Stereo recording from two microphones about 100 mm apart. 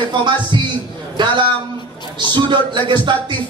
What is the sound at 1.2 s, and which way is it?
A man's voice, 50° right (ahead or behind).